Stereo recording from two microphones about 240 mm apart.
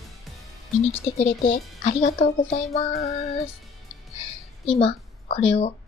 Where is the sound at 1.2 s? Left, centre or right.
Left.